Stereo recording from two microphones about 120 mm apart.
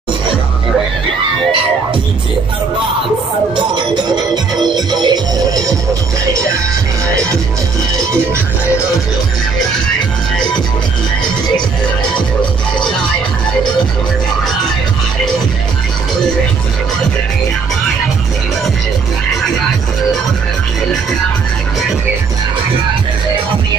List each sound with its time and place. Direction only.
3.5 s speech: 40° right (ahead or behind)
4.7 s music: 35° right (ahead or behind)